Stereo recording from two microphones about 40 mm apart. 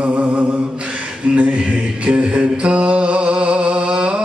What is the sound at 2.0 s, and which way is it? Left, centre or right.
Mantra, right.